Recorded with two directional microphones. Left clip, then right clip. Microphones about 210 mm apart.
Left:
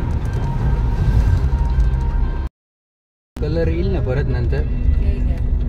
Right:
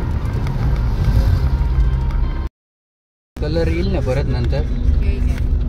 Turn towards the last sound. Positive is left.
turn(degrees=-15)  # may be behind; listen again after turning